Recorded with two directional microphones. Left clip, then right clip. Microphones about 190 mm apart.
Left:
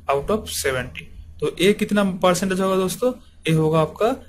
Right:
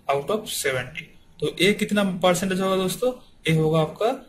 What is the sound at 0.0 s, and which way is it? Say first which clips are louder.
A man's voice: left 2 dB; 10° left (ahead or behind).